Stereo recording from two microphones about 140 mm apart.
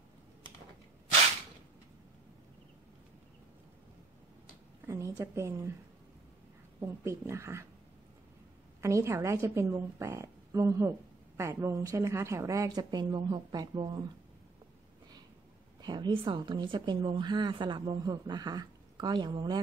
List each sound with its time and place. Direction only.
4.8 s a woman's voice: 20° right (ahead or behind)
6.8 s a woman's voice: 20° right (ahead or behind)
8.8 s a woman's voice: 20° right (ahead or behind)
15.8 s a woman's voice: 30° right (ahead or behind)